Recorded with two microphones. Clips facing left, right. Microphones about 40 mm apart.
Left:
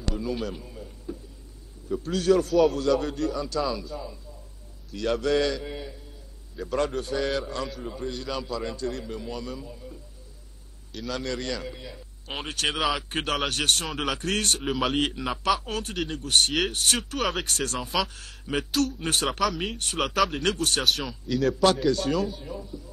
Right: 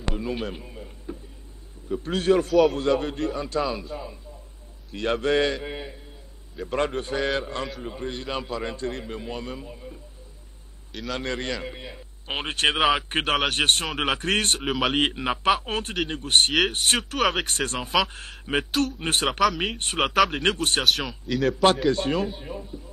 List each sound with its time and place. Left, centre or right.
0.0 s a sound: right
1.9 s a man's voice: right
11.1 s a man's voice: right
14.7 s speech: centre
15.0 s a man's voice: right
17.1 s speech: centre
17.5 s a man's voice: right
19.4 s speech: centre
19.8 s a man's voice: right
20.2 s speech: centre
20.4 s a man's voice: right
20.8 s speech: centre
21.8 s a man's voice: right